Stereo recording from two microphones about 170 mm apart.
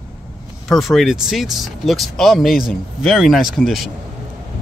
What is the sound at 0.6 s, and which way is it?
Speech, centre (ahead or behind).